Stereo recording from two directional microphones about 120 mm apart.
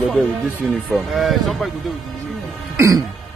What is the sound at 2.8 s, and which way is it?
Throat clearing, 25° right (ahead or behind).